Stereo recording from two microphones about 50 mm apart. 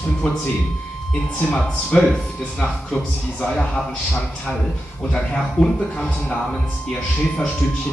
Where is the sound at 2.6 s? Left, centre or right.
Centre.